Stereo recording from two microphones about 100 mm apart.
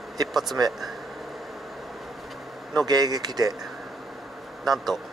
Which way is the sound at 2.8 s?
45° right (ahead or behind).